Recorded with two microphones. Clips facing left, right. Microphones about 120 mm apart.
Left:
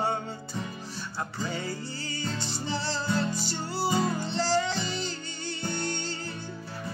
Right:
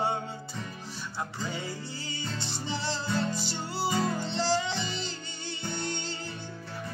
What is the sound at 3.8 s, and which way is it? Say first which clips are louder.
Music: left 2 dB; 10° left (ahead or behind).